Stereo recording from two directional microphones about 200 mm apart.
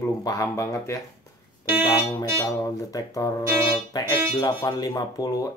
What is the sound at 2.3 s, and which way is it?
Speech, 15° left (ahead or behind).